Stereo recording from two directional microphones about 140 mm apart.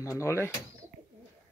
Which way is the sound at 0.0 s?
20° left (ahead or behind).